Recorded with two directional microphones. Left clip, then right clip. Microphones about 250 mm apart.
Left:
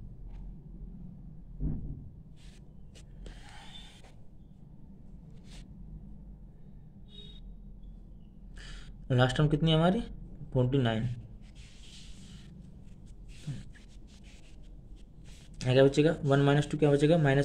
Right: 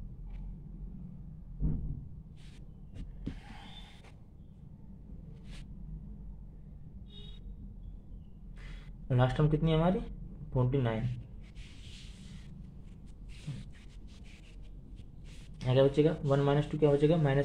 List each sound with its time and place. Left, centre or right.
9.0 s speech: left
15.6 s speech: left